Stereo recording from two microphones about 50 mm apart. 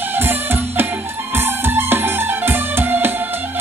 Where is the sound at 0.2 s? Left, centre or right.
Right.